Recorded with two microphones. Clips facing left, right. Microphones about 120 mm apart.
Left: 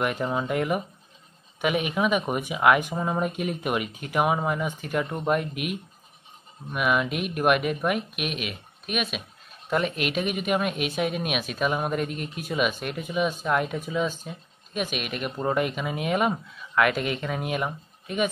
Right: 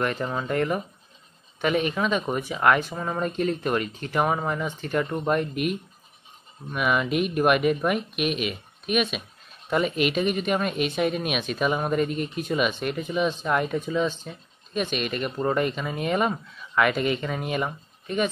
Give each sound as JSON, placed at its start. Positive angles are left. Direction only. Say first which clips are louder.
{"t": 0.0, "sound": "speech", "louder": "left 1 dB", "side_deg": 10}